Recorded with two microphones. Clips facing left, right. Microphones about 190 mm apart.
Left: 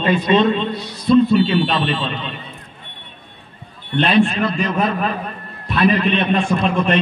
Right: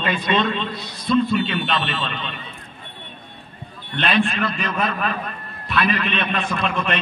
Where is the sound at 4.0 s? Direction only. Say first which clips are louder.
Left 5 dB; 30° left (ahead or behind).